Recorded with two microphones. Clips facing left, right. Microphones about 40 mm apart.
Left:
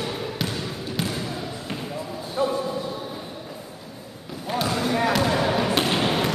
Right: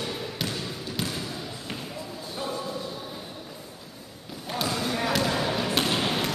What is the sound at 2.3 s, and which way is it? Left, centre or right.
Music, centre.